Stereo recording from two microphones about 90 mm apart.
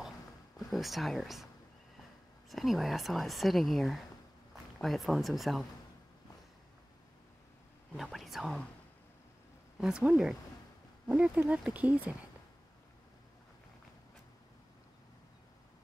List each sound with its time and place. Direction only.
0.7 s speech: centre (ahead or behind)
2.5 s speech: centre (ahead or behind)
7.9 s speech: centre (ahead or behind)
9.8 s speech: 5° right (ahead or behind)